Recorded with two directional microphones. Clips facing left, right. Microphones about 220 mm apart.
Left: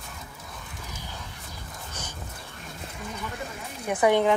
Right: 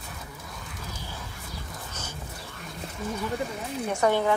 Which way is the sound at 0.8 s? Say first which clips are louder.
Right 2 dB; 15° left (ahead or behind).